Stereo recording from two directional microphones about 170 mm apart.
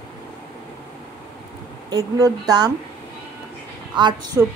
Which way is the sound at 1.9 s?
20° right (ahead or behind).